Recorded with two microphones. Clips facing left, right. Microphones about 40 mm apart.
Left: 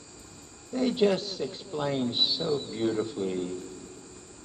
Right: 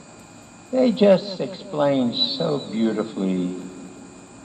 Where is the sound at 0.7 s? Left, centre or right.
Right.